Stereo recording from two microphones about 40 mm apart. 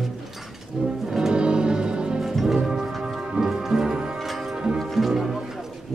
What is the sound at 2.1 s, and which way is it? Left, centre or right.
Music, centre.